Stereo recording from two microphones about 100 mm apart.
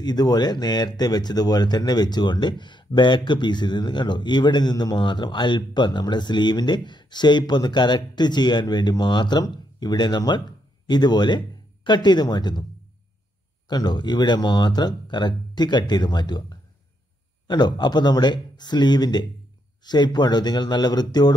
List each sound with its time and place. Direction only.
0.0 s speech: 40° left (ahead or behind)
13.7 s speech: 45° left (ahead or behind)